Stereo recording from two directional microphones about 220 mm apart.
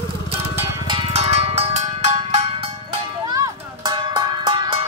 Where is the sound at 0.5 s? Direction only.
15° right (ahead or behind).